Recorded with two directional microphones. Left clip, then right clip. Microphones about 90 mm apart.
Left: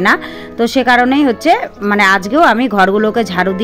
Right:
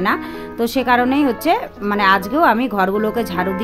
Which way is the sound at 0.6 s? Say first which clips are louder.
Left 5 dB; 30° left (ahead or behind).